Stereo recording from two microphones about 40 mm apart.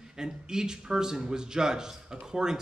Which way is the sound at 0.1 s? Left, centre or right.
Centre.